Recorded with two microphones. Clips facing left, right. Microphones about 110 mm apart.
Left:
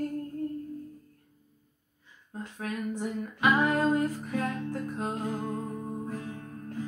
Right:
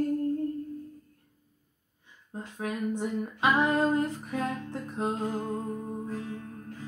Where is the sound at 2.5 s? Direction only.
20° right (ahead or behind).